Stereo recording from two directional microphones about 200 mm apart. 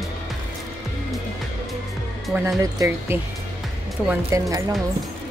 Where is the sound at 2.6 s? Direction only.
15° right (ahead or behind).